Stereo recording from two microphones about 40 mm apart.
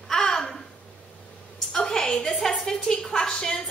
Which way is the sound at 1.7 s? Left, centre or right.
Centre.